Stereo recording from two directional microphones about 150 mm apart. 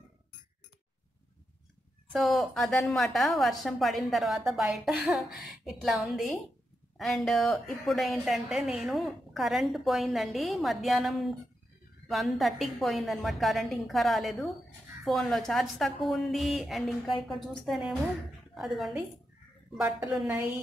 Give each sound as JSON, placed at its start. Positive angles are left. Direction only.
{"t": 2.1, "sound": "a woman's voice", "side_deg": 0}